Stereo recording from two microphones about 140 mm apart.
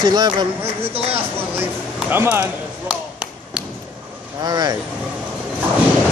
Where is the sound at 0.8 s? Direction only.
45° right (ahead or behind).